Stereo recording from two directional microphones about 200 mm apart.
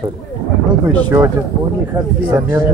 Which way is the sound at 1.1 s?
10° right (ahead or behind).